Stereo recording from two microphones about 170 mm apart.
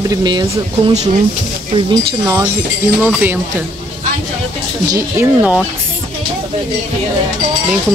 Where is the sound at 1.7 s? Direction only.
30° right (ahead or behind).